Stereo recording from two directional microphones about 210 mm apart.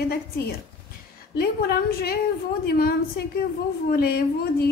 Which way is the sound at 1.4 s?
45° left (ahead or behind).